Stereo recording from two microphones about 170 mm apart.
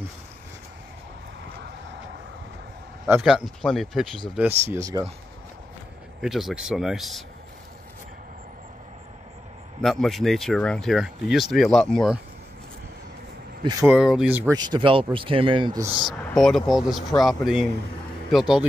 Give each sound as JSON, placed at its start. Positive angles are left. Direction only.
{"t": 3.2, "sound": "speech", "side_deg": 0}
{"t": 4.4, "sound": "speech", "side_deg": -15}
{"t": 6.2, "sound": "speech", "side_deg": -5}
{"t": 9.8, "sound": "speech", "side_deg": 0}
{"t": 13.7, "sound": "speech", "side_deg": -15}
{"t": 13.9, "sound": "speech", "side_deg": -5}
{"t": 14.5, "sound": "speech", "side_deg": -25}
{"t": 16.1, "sound": "speech", "side_deg": 0}